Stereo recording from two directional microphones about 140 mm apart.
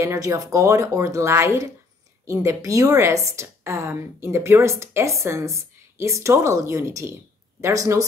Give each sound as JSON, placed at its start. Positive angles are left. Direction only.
{"t": 0.0, "sound": "a woman's voice", "side_deg": -20}